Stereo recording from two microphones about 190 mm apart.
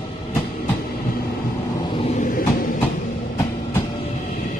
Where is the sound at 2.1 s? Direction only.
45° left (ahead or behind).